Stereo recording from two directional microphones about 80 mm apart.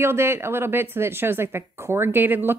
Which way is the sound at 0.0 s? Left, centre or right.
Right.